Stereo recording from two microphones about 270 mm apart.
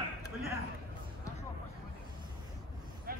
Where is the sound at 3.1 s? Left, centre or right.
Right.